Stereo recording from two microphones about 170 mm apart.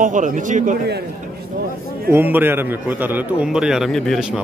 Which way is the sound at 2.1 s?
10° right (ahead or behind).